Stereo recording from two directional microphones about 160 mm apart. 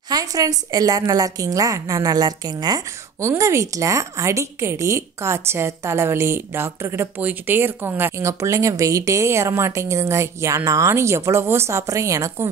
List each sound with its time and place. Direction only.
0.1 s a woman's voice: 20° right (ahead or behind)